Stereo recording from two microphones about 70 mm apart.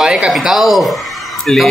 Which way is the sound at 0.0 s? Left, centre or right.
Centre.